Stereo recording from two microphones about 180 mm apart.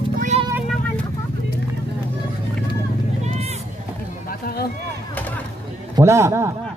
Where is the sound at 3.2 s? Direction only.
35° right (ahead or behind).